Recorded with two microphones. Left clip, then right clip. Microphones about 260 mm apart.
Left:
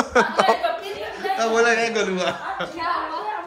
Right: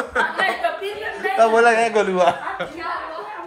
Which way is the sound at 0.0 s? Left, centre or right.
Left.